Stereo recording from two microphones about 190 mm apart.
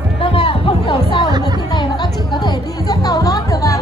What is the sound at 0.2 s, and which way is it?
Music, 30° left (ahead or behind).